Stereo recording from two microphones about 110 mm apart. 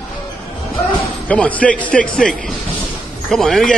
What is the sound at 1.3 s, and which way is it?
Speech, 10° left (ahead or behind).